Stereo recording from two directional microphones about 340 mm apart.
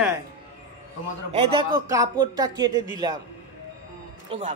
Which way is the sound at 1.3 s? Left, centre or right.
Centre.